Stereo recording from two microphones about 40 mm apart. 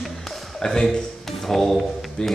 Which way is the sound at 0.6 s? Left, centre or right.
Centre.